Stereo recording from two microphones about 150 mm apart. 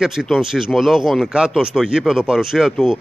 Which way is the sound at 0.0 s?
5° right (ahead or behind).